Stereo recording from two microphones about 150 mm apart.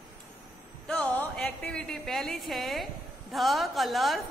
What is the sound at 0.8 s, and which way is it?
A woman's voice, 10° left (ahead or behind).